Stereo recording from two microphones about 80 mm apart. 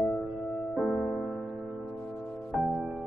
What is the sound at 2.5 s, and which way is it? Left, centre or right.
Music, centre.